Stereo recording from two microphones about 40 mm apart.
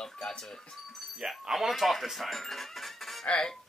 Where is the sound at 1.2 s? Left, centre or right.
Centre.